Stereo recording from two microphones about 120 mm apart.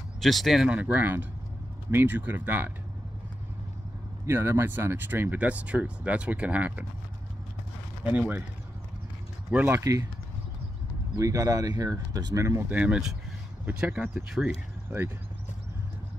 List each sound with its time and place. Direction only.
0.2 s speech: centre (ahead or behind)
0.7 s speech: 15° right (ahead or behind)
4.3 s speech: 20° right (ahead or behind)
8.0 s speech: 10° right (ahead or behind)
9.5 s speech: 15° right (ahead or behind)
11.1 s speech: 25° right (ahead or behind)
12.7 s speech: 10° right (ahead or behind)